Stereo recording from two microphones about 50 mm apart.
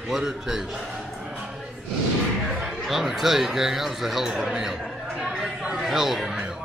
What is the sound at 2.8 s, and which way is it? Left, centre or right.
A man's voice, centre.